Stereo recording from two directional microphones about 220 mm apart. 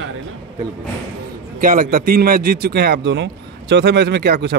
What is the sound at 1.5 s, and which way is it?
A man's voice, 40° right (ahead or behind).